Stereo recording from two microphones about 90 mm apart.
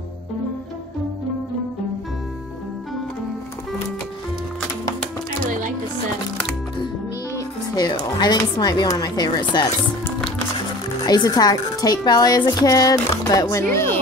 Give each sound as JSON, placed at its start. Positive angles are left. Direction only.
{"t": 7.3, "sound": "a woman's voice", "side_deg": 50}
{"t": 11.1, "sound": "a woman's voice", "side_deg": 45}